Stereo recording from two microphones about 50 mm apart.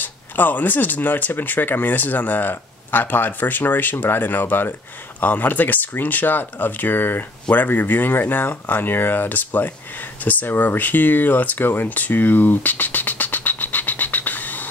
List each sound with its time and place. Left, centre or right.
0.0 s speech: left